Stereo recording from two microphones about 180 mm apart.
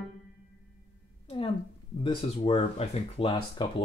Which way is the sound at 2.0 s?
30° left (ahead or behind).